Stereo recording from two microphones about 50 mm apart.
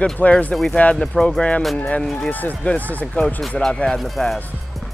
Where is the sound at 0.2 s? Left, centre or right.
Left.